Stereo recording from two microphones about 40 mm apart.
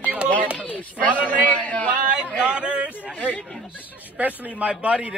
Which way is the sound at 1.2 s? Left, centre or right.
Left.